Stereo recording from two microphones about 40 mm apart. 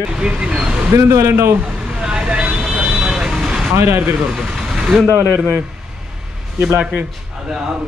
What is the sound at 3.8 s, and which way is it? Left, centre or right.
Speech, right.